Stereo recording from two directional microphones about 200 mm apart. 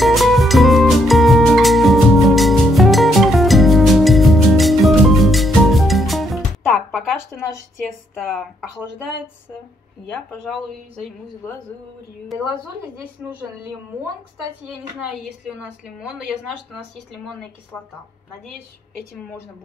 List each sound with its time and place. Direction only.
0.0 s music: centre (ahead or behind)
8.2 s speech: centre (ahead or behind)
10.3 s speech: 5° left (ahead or behind)
15.8 s a woman's voice: 5° right (ahead or behind)